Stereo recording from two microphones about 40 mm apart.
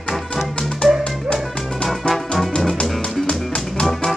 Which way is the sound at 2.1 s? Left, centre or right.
Left.